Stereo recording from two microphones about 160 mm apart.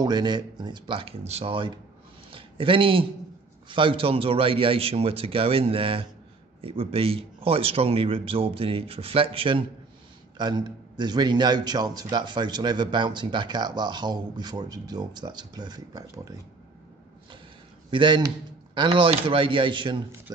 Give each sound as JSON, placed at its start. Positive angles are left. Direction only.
{"t": 0.0, "sound": "a man's voice", "side_deg": -25}
{"t": 17.9, "sound": "a man's voice", "side_deg": -30}